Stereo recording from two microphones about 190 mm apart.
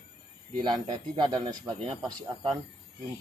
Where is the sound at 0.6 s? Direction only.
20° right (ahead or behind).